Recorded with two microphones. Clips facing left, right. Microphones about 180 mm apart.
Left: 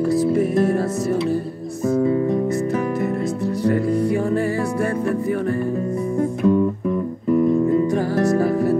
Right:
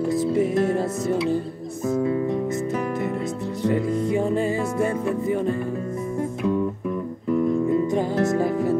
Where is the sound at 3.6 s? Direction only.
20° right (ahead or behind).